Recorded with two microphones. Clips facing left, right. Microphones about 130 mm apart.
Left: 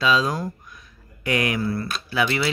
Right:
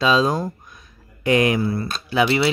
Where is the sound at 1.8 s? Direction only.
30° right (ahead or behind).